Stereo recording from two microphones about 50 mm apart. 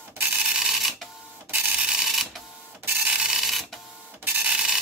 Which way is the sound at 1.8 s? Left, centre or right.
Centre.